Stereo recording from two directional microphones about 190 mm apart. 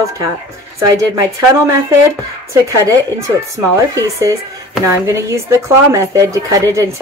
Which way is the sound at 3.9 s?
15° right (ahead or behind).